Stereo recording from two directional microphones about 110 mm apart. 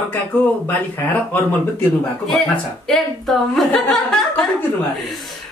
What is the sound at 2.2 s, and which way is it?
Speech, 5° left (ahead or behind).